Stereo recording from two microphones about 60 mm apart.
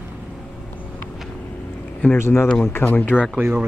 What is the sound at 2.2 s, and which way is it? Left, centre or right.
Speech, left.